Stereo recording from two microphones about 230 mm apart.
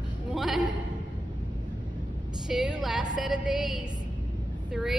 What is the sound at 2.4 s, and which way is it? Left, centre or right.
A woman's voice, centre.